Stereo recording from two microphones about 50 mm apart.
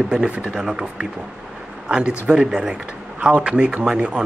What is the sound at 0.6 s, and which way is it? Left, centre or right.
Speech, centre.